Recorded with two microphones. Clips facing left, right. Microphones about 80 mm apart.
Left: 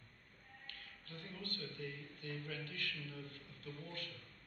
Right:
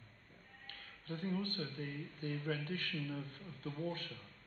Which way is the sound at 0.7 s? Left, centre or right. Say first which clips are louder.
Right 9 dB; right.